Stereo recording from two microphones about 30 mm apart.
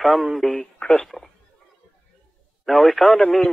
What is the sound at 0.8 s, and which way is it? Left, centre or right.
Telephone, left.